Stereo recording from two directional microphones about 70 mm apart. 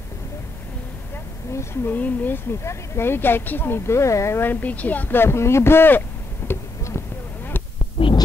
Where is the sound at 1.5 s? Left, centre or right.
Left.